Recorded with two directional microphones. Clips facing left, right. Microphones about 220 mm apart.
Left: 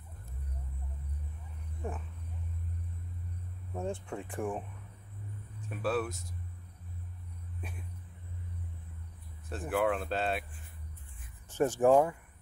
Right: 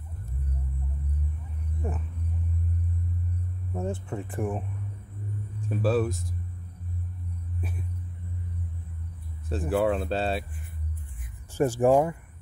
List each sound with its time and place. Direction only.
3.7 s speech: 5° right (ahead or behind)
5.7 s speech: 35° right (ahead or behind)
9.5 s speech: 30° right (ahead or behind)
11.5 s speech: 10° right (ahead or behind)